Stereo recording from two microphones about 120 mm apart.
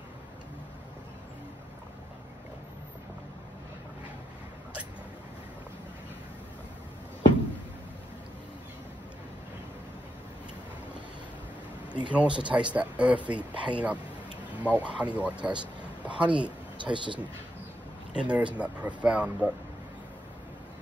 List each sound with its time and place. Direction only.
12.1 s speech: 10° right (ahead or behind)
15.6 s a sound: 10° right (ahead or behind)
16.7 s speech: 40° right (ahead or behind)
18.1 s speech: 10° right (ahead or behind)